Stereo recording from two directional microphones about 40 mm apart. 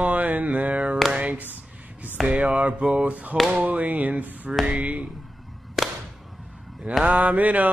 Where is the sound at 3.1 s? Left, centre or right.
Right.